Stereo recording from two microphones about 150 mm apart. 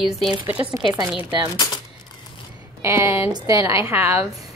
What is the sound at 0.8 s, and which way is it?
Speech, 20° right (ahead or behind).